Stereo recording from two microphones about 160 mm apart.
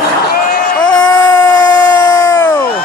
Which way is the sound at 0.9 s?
25° left (ahead or behind).